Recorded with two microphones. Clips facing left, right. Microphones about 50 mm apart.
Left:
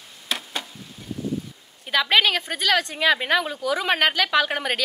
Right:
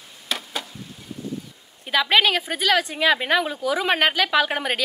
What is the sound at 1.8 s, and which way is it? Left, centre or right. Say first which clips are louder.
Speech: right 1 dB; centre.